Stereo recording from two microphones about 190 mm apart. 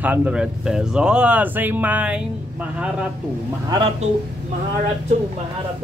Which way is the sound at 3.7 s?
25° right (ahead or behind).